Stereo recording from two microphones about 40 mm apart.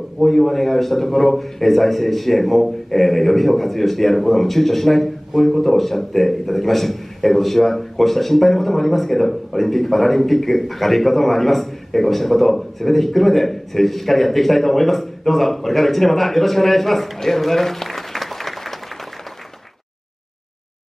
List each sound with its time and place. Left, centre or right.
0.2 s a man's voice: centre